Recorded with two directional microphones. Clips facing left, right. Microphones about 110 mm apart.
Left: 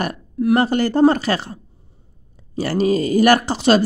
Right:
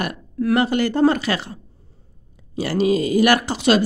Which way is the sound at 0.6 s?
35° left (ahead or behind).